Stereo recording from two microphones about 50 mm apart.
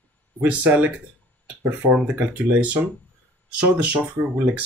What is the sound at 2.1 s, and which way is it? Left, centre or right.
Speech, right.